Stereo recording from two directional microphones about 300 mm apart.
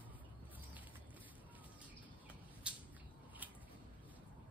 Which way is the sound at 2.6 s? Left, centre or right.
Centre.